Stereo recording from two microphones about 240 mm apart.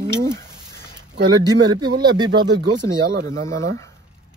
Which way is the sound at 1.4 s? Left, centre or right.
Centre.